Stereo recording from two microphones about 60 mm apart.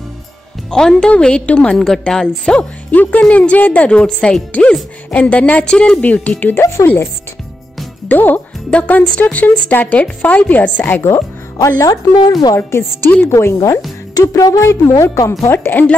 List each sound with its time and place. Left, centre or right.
0.7 s speech: centre
2.9 s speech: left
8.1 s speech: left
8.6 s speech: left
11.0 s speech: left
11.8 s speech: left
12.5 s a woman's voice: left
14.1 s music: left
14.6 s a woman's voice: left
15.5 s speech: left